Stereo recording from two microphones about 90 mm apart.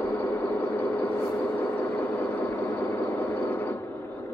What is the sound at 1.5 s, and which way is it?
Vehicle, 20° left (ahead or behind).